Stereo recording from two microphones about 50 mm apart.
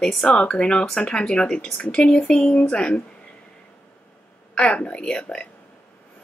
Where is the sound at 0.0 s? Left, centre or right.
Centre.